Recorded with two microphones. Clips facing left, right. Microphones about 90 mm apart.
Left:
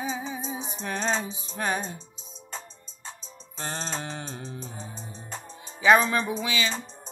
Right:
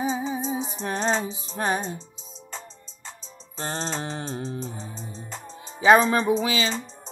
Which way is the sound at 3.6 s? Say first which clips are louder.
Right 4 dB; 35° right (ahead or behind).